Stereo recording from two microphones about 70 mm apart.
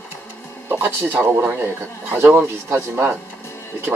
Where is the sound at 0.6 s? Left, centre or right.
Right.